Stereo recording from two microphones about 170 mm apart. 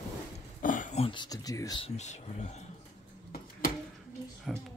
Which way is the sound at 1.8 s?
40° left (ahead or behind).